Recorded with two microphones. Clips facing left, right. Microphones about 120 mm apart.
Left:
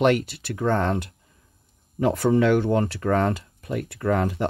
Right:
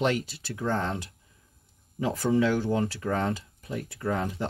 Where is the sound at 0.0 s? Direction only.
60° left (ahead or behind).